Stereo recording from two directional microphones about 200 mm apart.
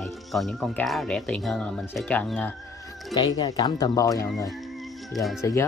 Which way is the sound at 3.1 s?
20° left (ahead or behind).